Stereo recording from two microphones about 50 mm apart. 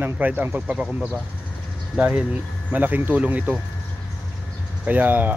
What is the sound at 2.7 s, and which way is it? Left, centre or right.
Speech, right.